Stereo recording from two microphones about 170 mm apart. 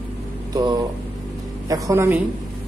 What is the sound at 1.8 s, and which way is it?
Speech, 15° right (ahead or behind).